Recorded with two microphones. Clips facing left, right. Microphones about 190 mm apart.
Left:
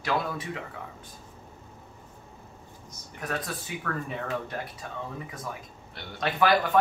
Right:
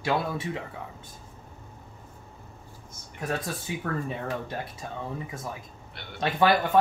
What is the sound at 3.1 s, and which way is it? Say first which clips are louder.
Speech: right 2 dB; 25° right (ahead or behind).